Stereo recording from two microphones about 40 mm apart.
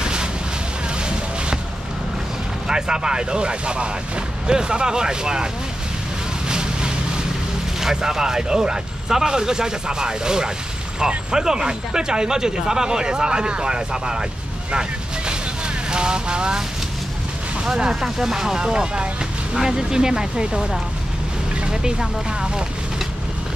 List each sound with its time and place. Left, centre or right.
0.0 s boat: centre
2.7 s speech: centre
6.5 s vehicle: centre
7.8 s speech: centre
14.7 s vehicle: right
15.9 s speech: right
18.0 s speech: centre